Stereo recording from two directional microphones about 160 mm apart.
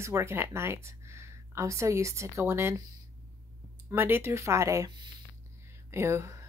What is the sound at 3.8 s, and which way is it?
Speech, 15° right (ahead or behind).